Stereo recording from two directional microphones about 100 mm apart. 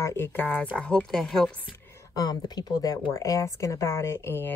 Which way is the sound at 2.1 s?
40° left (ahead or behind).